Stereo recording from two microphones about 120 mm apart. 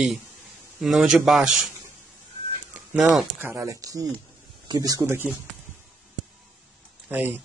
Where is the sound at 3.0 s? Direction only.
Centre (ahead or behind).